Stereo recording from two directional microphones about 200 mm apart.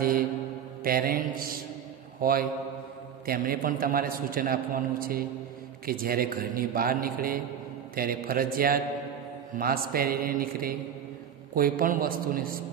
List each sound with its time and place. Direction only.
0.8 s a man's voice: 45° right (ahead or behind)